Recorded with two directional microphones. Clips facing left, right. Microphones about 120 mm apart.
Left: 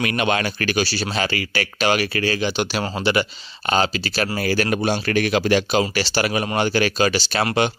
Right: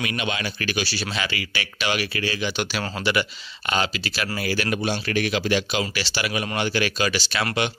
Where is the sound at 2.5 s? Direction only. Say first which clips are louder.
Left 4 dB; 35° left (ahead or behind).